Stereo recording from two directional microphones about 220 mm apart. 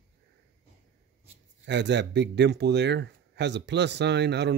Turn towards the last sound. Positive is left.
turn(degrees=-50)  # may be behind; listen again after turning